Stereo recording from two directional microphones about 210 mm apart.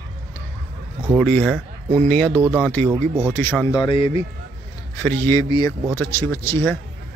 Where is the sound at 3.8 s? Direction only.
25° left (ahead or behind).